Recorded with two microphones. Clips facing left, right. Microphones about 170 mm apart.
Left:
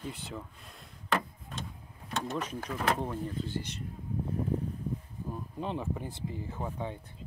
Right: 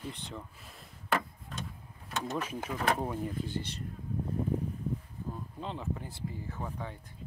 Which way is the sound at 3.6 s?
30° right (ahead or behind).